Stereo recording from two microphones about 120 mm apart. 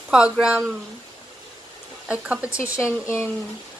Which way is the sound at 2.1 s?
10° right (ahead or behind).